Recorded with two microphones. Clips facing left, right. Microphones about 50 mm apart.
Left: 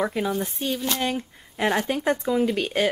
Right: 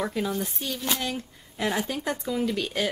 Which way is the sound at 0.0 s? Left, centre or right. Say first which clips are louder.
Left 3 dB; centre.